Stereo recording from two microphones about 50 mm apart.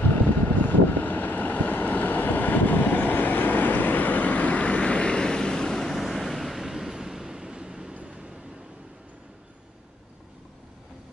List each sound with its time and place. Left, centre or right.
0.0 s vehicle: left; by 8.3 s centre